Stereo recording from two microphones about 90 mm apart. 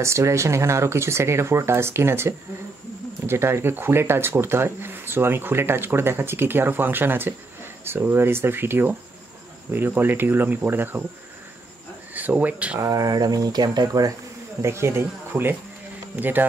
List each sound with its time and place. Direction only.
0.0 s speech: 30° right (ahead or behind)
12.1 s speech: 20° right (ahead or behind)
12.8 s speech: 40° right (ahead or behind)
14.6 s speech: 30° right (ahead or behind)